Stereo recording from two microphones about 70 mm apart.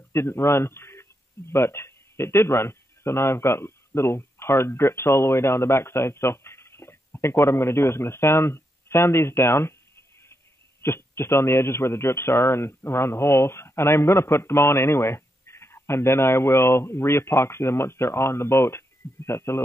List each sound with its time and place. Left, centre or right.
0.1 s a man's voice: left